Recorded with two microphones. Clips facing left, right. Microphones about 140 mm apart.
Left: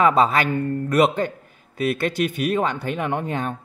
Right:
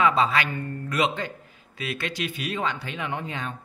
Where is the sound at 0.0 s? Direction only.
45° left (ahead or behind).